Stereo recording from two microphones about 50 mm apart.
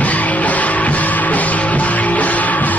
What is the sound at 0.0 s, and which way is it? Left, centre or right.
Music, left.